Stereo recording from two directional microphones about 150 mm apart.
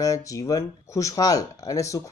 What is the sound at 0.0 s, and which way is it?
Speech, 20° left (ahead or behind).